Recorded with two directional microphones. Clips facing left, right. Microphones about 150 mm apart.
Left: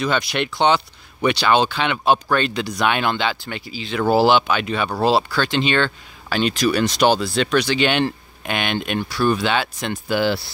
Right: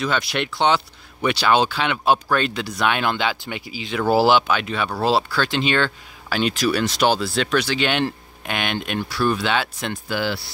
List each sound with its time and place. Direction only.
0.0 s speech: centre (ahead or behind)
10.0 s speech: 20° left (ahead or behind)